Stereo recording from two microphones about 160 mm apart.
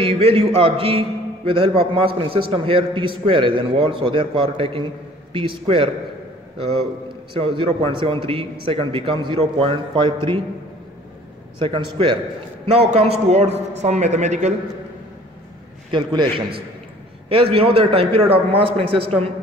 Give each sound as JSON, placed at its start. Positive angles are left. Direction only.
{"t": 0.0, "sound": "a man's voice", "side_deg": -35}
{"t": 7.3, "sound": "a man's voice", "side_deg": -35}
{"t": 11.6, "sound": "a man's voice", "side_deg": -30}
{"t": 15.9, "sound": "a man's voice", "side_deg": -30}
{"t": 17.3, "sound": "a man's voice", "side_deg": -35}